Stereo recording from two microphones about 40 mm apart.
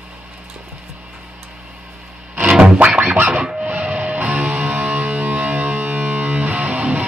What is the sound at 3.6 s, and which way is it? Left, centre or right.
Music, right.